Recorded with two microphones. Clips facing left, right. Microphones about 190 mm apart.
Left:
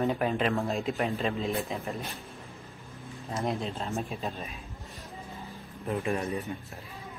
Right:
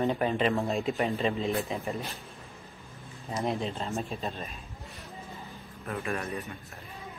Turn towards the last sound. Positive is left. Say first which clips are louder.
# left 3 dB
turn(degrees=15)  # may be behind; listen again after turning